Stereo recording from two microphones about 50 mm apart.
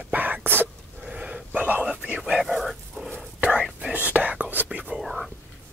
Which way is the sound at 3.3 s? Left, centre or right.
Right.